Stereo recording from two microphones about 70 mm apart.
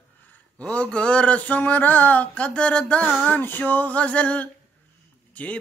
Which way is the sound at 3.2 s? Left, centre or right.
Left.